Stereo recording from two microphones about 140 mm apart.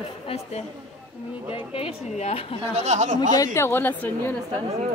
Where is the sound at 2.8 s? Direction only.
55° right (ahead or behind).